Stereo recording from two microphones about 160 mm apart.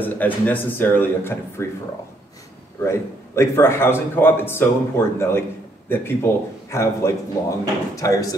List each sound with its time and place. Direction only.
0.0 s a man's voice: 10° left (ahead or behind)
2.8 s a man's voice: 15° left (ahead or behind)